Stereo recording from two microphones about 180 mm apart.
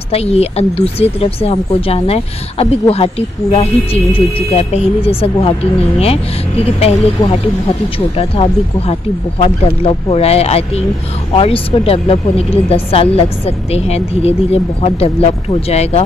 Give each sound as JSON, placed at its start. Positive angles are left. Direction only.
{"t": 0.1, "sound": "speech", "side_deg": 35}
{"t": 6.6, "sound": "speech", "side_deg": 35}